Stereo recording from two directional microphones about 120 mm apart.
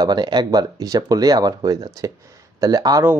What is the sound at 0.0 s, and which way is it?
Speech, 35° right (ahead or behind).